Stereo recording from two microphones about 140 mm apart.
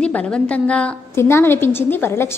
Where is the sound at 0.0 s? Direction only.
10° left (ahead or behind).